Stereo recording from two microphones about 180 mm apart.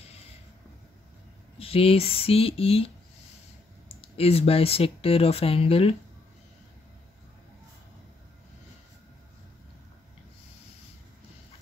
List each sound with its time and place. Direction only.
1.6 s speech: 30° left (ahead or behind)
3.9 s speech: 35° left (ahead or behind)